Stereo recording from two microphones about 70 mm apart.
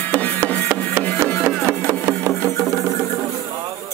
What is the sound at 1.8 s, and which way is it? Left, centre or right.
Wood, right.